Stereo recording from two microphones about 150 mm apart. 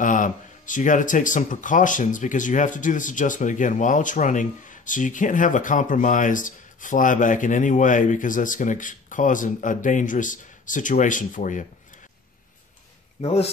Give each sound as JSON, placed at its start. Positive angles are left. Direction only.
{"t": 0.0, "sound": "speech", "side_deg": 60}
{"t": 13.2, "sound": "speech", "side_deg": 45}